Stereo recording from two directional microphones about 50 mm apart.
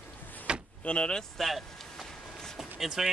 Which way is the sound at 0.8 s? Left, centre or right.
Left.